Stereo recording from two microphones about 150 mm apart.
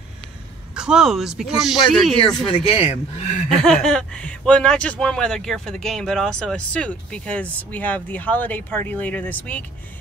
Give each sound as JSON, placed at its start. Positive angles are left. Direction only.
{"t": 0.7, "sound": "speech", "side_deg": -5}
{"t": 2.5, "sound": "speech", "side_deg": 40}
{"t": 3.4, "sound": "speech", "side_deg": 5}